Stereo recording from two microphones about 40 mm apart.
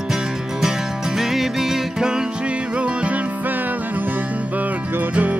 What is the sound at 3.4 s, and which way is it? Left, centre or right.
Music, right.